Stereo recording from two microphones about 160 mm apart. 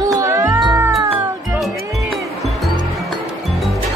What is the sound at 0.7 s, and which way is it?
Cat, 15° right (ahead or behind).